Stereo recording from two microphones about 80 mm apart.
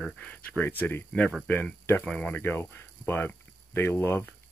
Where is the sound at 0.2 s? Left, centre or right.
Centre.